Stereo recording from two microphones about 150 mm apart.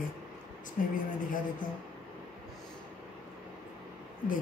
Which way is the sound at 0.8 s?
60° left (ahead or behind).